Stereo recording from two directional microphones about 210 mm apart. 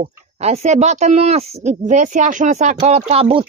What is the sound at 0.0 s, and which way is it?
Speech, 30° right (ahead or behind).